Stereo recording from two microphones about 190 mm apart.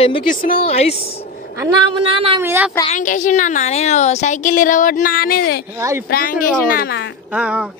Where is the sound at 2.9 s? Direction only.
40° left (ahead or behind).